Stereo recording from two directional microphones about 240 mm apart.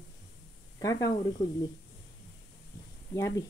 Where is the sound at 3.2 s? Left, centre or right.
Centre.